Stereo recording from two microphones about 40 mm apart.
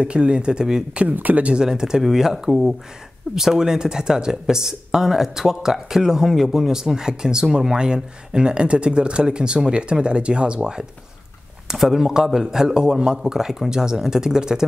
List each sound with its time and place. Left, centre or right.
0.0 s speech: right
1.0 s speech: right
1.5 s speech: centre
11.6 s speech: centre